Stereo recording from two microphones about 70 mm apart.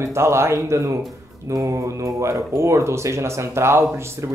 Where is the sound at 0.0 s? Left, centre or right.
Right.